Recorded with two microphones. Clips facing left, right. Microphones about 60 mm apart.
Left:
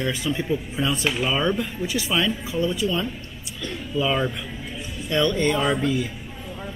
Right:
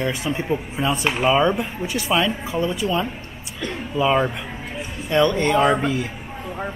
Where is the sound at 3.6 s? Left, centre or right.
Right.